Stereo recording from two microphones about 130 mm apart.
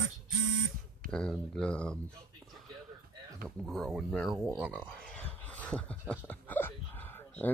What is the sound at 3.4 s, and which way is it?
Speech, 5° left (ahead or behind).